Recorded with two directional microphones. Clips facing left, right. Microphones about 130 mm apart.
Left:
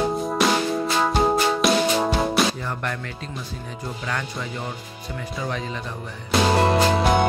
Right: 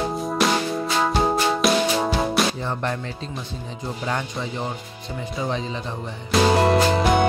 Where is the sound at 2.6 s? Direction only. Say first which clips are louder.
Right 3 dB; 25° right (ahead or behind).